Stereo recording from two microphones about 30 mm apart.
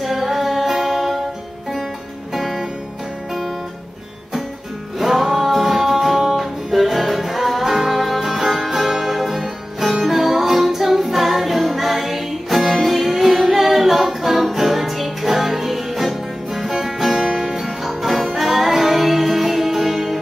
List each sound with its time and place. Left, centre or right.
0.0 s music: centre
2.3 s music: centre
4.9 s music: centre